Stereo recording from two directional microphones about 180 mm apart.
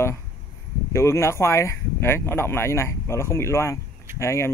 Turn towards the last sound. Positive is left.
turn(degrees=15)  # may be behind; listen again after turning